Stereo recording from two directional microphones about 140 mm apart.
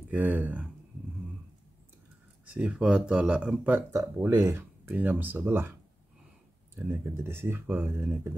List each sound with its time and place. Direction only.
0.1 s speech: 10° right (ahead or behind)
2.5 s speech: 5° right (ahead or behind)